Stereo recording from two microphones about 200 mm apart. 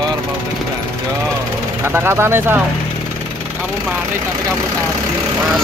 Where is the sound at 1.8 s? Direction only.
10° right (ahead or behind).